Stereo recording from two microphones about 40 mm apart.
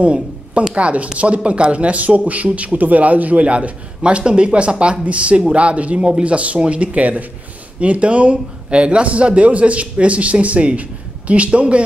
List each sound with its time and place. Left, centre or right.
0.0 s a woman's voice: right